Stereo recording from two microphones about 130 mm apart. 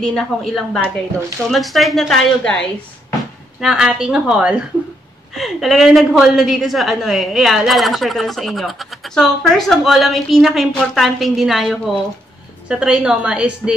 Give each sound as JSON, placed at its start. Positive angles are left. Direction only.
{"t": 0.0, "sound": "a woman's voice", "side_deg": 5}
{"t": 3.6, "sound": "a woman's voice", "side_deg": -5}